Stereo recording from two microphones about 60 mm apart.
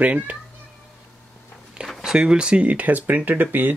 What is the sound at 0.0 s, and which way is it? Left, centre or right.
Speech, right.